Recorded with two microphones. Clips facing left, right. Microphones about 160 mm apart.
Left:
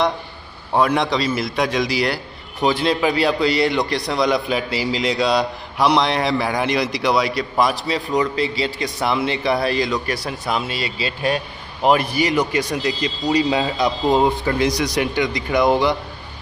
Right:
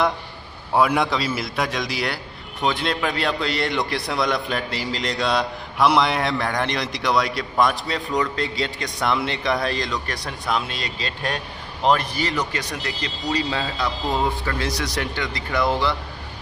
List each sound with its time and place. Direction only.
0.7 s a man's voice: 5° right (ahead or behind); by 16.0 s 15° left (ahead or behind)